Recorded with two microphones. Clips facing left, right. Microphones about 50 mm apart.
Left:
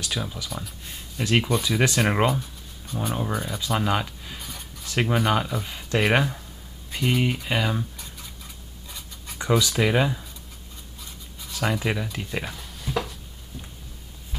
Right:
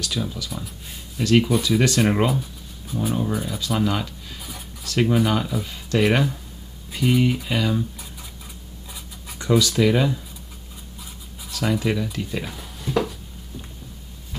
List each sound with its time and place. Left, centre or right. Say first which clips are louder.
0.0 s speech: right 3 dB; centre
2.9 s speech: right 3 dB; centre
4.4 s a sound: right 3 dB; centre
4.8 s speech: right 3 dB; centre
6.9 s speech: right 4 dB; centre
9.4 s speech: right 3 dB; centre
11.5 s speech: right 3 dB; centre
12.4 s speech: right 3 dB; centre